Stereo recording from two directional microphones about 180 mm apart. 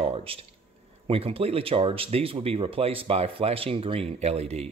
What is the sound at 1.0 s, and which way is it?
Speech, 30° right (ahead or behind).